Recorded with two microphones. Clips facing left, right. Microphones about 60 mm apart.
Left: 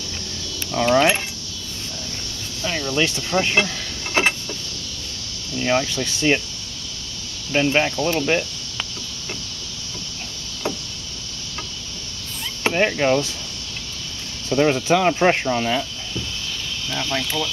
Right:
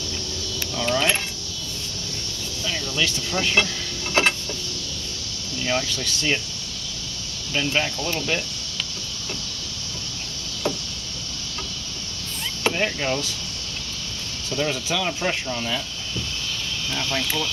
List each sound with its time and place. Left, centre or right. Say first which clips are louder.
0.7 s speech: left 6 dB; left
2.6 s a sound: left 4 dB; left
5.6 s speech: left 5 dB; left
7.5 s speech: left 5 dB; left
12.6 s speech: left 5 dB; left
14.5 s speech: left 8 dB; left
16.9 s speech: left 2 dB; centre